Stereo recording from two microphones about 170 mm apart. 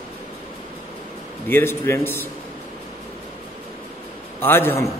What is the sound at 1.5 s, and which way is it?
Speech, 15° left (ahead or behind).